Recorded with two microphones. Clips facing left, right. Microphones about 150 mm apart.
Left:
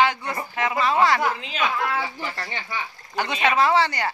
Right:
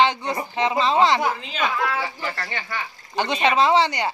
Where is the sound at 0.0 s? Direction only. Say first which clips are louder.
Right 2 dB; 20° right (ahead or behind).